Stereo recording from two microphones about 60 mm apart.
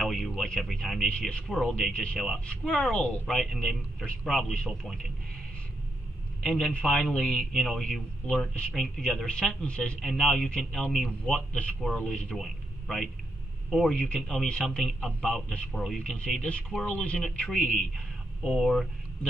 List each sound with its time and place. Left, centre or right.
0.0 s a sound: centre
0.6 s a man's voice: centre
2.1 s speech: centre
2.4 s a man's voice: centre
6.4 s a man's voice: centre
7.6 s a man's voice: centre
12.8 s a man's voice: centre
13.9 s a man's voice: centre
15.7 s speech: centre
16.0 s a man's voice: centre
17.2 s a man's voice: centre
17.6 s a man's voice: left
18.4 s speech: centre